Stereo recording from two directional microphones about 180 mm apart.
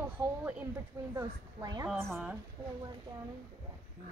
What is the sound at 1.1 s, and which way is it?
A woman's voice, 20° right (ahead or behind).